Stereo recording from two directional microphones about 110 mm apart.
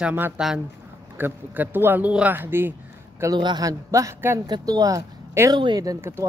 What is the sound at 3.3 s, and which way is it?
A man's voice, 40° right (ahead or behind).